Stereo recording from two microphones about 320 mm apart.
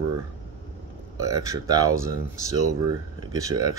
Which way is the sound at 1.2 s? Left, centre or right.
Centre.